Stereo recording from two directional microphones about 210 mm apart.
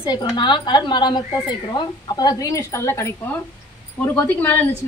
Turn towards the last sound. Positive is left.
turn(degrees=10)  # may be behind; listen again after turning